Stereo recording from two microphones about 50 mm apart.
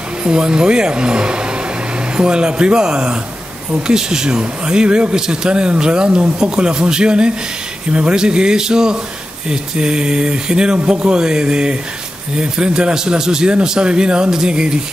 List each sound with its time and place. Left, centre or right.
0.2 s speech: centre